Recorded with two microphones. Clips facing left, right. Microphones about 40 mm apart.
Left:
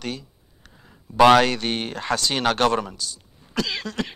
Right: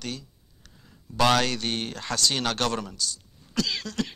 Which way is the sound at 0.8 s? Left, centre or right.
Left.